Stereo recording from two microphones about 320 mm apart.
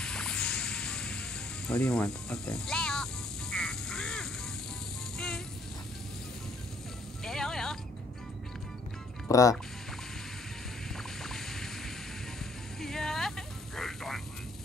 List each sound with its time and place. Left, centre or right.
0.0 s music: centre
7.2 s music: centre
9.3 s speech: centre
11.2 s boat: centre
12.8 s a sound: centre
13.7 s vehicle: centre